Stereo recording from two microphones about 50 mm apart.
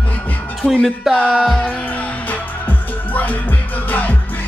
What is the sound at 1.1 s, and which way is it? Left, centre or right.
Music, centre.